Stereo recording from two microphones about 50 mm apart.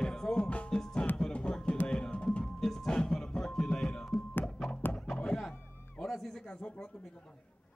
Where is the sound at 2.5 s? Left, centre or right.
Centre.